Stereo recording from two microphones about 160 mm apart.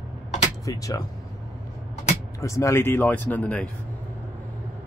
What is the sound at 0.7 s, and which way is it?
Speech, 20° left (ahead or behind).